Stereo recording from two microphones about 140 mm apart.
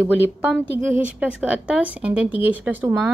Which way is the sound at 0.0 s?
15° right (ahead or behind).